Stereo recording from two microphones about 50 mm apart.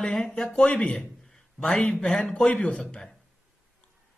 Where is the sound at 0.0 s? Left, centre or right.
Centre.